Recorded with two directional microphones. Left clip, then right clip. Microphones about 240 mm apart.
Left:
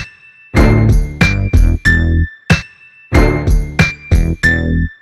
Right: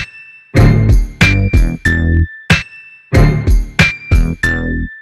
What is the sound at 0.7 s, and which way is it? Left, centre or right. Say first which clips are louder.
Music: left 3 dB; left.